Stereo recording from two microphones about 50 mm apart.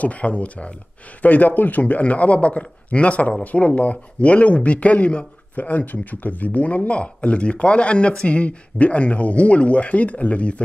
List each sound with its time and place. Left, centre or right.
0.0 s speech: left